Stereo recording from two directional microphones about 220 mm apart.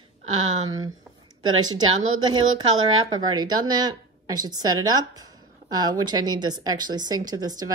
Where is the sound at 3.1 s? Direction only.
20° right (ahead or behind).